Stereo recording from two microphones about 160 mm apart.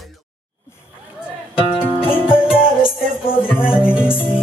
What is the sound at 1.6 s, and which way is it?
Music, 35° left (ahead or behind).